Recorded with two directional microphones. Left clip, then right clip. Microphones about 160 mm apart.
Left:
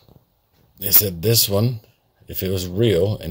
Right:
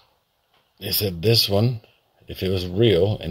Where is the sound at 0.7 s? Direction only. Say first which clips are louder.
Left 1 dB; 10° left (ahead or behind).